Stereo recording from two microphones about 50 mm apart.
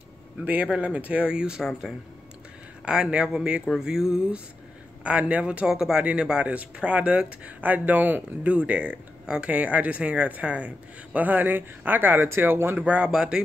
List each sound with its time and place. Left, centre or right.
0.7 s speech: right
1.6 s speech: centre
2.8 s speech: centre
3.7 s speech: centre
5.0 s speech: right
5.7 s speech: centre; by 10.7 s right
11.1 s speech: right
12.7 s speech: right
13.1 s speech: centre